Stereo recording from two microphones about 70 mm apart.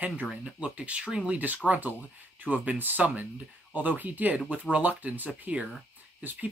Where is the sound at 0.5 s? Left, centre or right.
Centre.